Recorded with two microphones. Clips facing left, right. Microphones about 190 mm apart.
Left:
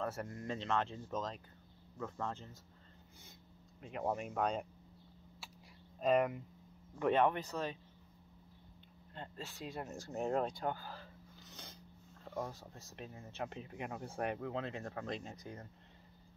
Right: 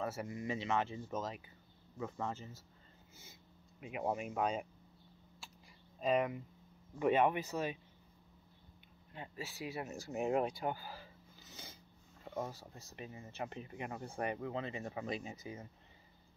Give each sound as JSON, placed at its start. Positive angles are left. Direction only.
{"t": 0.0, "sound": "speech", "side_deg": -5}
{"t": 3.8, "sound": "speech", "side_deg": -5}
{"t": 5.9, "sound": "speech", "side_deg": 0}
{"t": 9.1, "sound": "speech", "side_deg": -5}